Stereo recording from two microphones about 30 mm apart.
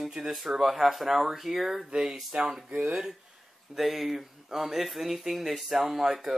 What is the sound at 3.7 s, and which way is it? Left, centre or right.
Speech, centre.